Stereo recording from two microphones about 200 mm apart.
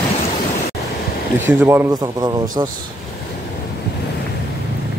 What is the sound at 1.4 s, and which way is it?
Speech, 10° right (ahead or behind).